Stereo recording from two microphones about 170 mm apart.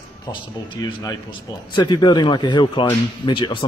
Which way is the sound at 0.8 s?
20° left (ahead or behind).